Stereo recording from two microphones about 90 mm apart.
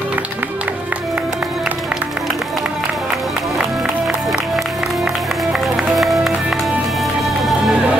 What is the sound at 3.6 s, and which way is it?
Music, centre (ahead or behind).